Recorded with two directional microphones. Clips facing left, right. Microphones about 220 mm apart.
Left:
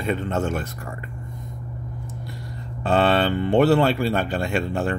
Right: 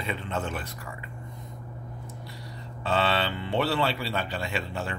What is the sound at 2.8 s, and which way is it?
Speech, 50° left (ahead or behind).